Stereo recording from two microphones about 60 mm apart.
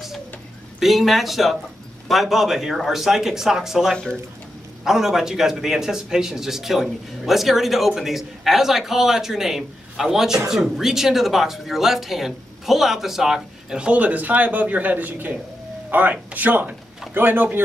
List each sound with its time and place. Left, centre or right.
0.7 s a man's voice: centre
3.9 s speech: centre
4.8 s a man's voice: centre
13.7 s a man's voice: right